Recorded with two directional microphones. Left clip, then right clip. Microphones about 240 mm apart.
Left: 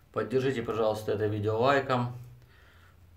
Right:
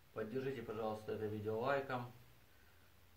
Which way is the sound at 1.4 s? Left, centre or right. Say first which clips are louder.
Left 13 dB; left.